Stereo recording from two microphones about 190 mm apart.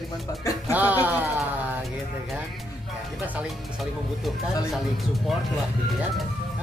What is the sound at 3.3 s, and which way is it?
Music, 5° right (ahead or behind).